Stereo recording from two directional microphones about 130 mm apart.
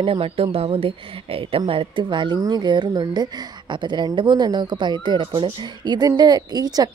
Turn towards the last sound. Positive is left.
turn(degrees=-30)  # may be behind; listen again after turning